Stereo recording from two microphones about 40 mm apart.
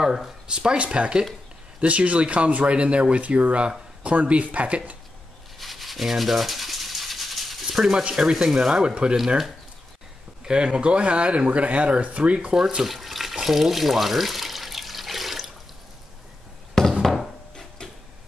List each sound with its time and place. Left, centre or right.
0.0 s speech: centre
0.5 s speech: right
5.6 s rub: centre
8.1 s speech: centre
8.7 s speech: right
10.4 s speech: right
12.5 s water tap: centre
17.0 s a sound: centre